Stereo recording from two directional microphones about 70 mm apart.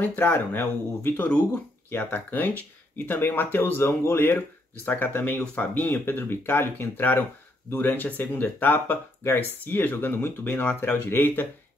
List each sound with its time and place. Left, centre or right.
0.0 s speech: left
0.3 s speech: left